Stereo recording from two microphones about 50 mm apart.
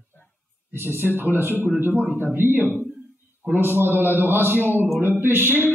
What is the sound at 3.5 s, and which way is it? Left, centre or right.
Speech, right.